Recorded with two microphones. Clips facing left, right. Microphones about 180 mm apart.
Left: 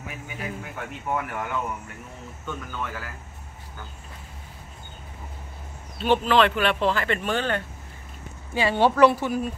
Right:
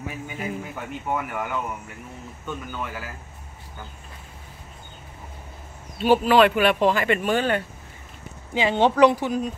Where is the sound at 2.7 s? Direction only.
10° right (ahead or behind).